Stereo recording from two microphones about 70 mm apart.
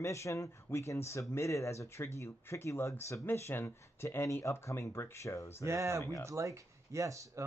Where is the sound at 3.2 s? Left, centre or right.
Left.